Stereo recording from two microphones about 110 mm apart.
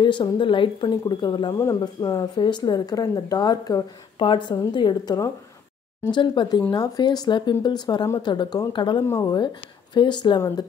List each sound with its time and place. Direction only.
0.0 s speech: 45° left (ahead or behind)
9.0 s speech: 25° left (ahead or behind)
9.9 s speech: 45° left (ahead or behind)